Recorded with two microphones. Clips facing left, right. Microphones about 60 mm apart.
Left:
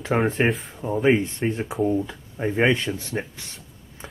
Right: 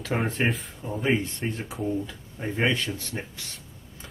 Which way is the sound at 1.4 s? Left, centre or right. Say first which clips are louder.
Left 7 dB; left.